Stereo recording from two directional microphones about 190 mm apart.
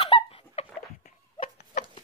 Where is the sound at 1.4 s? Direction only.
45° left (ahead or behind).